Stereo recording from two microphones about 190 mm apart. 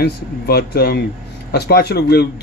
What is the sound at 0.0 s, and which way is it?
Speech, 55° left (ahead or behind).